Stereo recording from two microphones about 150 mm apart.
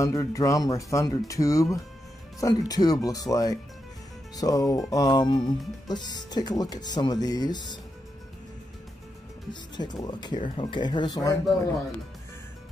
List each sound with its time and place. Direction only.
0.0 s speech: 20° left (ahead or behind)
9.5 s speech: 30° left (ahead or behind)